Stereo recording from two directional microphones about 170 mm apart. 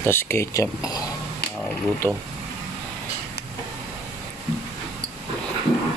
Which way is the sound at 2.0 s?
15° left (ahead or behind).